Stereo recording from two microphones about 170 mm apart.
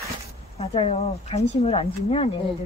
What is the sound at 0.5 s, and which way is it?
Speech, 40° left (ahead or behind).